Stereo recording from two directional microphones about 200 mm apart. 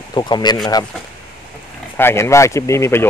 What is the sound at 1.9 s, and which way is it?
Speech, 10° left (ahead or behind).